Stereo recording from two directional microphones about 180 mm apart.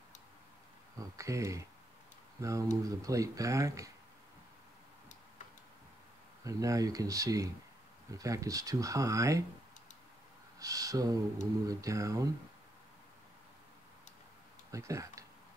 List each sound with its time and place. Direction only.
0.9 s speech: 15° right (ahead or behind)
6.4 s speech: 20° right (ahead or behind)
10.6 s speech: 20° right (ahead or behind)
14.7 s speech: 15° right (ahead or behind)